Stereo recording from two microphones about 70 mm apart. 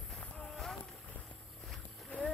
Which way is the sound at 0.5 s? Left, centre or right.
Centre.